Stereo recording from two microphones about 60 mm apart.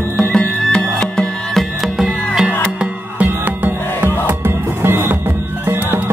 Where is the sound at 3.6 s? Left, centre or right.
Right.